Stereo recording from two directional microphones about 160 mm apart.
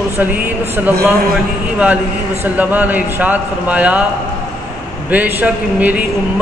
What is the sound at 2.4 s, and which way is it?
A man's voice, 10° right (ahead or behind).